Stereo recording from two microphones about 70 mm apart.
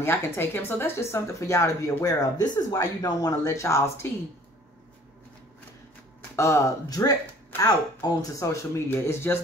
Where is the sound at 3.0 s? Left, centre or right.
Left.